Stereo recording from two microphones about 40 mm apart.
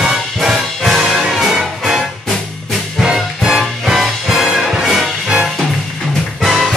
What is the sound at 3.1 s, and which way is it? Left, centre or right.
Music, centre.